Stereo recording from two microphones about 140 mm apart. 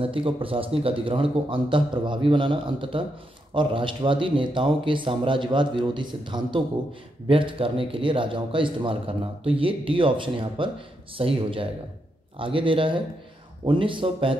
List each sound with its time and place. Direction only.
0.0 s a man's voice: 40° right (ahead or behind)